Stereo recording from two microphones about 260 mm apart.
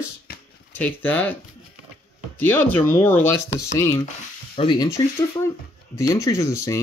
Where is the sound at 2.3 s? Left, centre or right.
Centre.